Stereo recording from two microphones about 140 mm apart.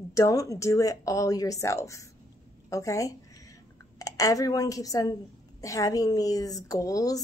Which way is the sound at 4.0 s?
25° left (ahead or behind).